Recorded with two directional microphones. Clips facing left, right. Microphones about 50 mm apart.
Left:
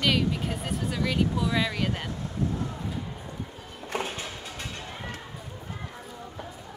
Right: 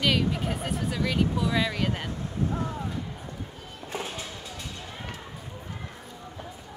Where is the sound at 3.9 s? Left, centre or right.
Left.